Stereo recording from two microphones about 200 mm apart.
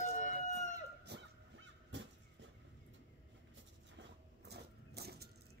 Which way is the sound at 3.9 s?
55° right (ahead or behind).